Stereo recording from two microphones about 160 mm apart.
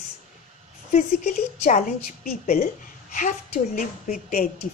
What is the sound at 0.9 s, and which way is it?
A woman's voice, 50° left (ahead or behind).